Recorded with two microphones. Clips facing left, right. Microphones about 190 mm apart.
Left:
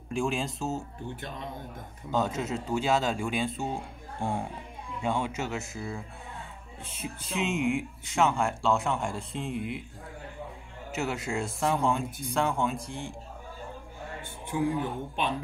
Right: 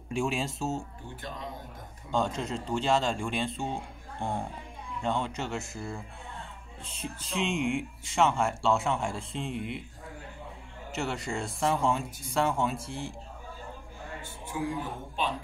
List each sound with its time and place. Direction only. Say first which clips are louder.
0.1 s speech: left 1 dB; centre (ahead or behind)
2.1 s speech: left 1 dB; 5° left (ahead or behind)
7.3 s speech: left 1 dB; 5° left (ahead or behind)
10.9 s speech: left 2 dB; 5° left (ahead or behind)
14.8 s a man's voice: left 3 dB; 60° left (ahead or behind)